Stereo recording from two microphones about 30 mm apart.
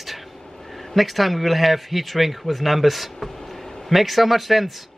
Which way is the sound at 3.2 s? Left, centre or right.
Centre.